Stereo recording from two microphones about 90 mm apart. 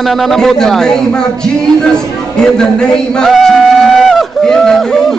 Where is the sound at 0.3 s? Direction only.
5° left (ahead or behind).